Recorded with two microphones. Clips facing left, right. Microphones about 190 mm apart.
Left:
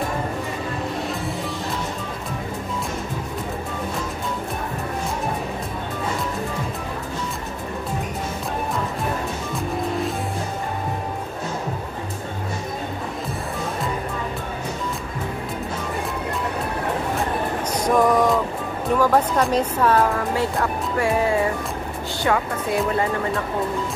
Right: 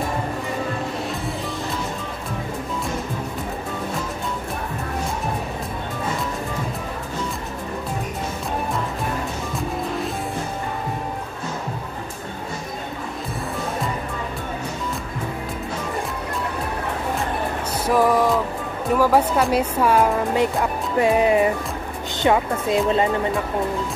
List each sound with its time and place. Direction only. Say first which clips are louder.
17.8 s music: even; 5° right (ahead or behind)
18.9 s speech: right 1 dB; 5° right (ahead or behind)